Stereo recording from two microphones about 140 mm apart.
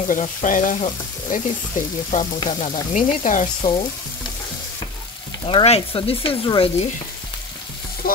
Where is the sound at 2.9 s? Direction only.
65° left (ahead or behind).